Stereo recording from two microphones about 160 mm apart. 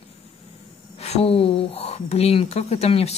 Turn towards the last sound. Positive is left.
turn(degrees=40)  # may be behind; listen again after turning